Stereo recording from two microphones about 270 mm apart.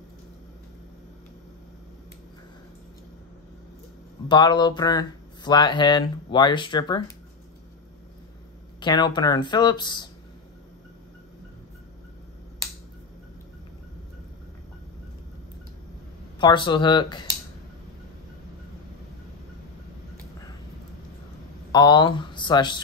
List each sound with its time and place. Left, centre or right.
4.3 s speech: centre
8.7 s speech: centre
16.3 s speech: centre
21.7 s speech: centre